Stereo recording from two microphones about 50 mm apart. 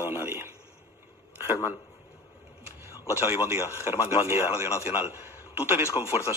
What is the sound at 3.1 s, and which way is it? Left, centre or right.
Speech, right.